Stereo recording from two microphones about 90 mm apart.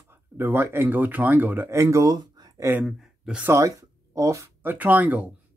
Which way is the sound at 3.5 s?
35° right (ahead or behind).